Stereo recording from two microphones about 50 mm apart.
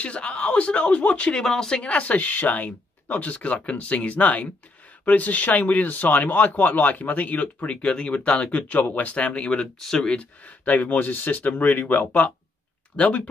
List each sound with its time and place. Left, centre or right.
0.0 s speech: left
9.8 s speech: centre
10.0 s speech: left
12.9 s speech: left